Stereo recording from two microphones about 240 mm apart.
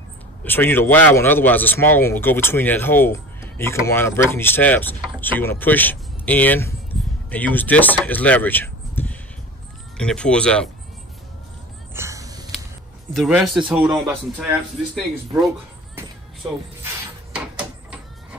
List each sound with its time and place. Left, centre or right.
0.4 s a man's voice: centre
11.9 s a sound: centre
13.1 s a man's voice: centre
16.4 s speech: centre
16.8 s rub: centre